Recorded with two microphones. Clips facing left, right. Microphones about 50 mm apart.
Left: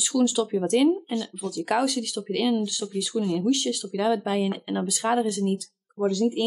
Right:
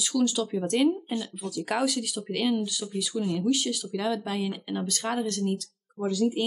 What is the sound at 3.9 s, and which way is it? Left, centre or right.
Speech, centre.